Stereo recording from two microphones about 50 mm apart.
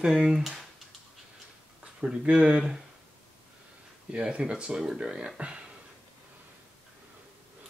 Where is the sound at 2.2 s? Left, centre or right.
Right.